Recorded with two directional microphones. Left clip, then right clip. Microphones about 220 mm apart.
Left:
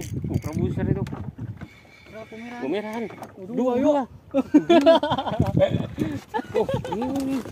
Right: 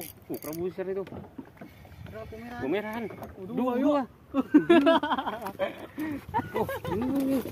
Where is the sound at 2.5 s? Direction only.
40° left (ahead or behind).